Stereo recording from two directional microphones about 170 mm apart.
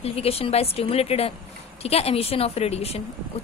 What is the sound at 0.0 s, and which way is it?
A woman's voice, 35° left (ahead or behind).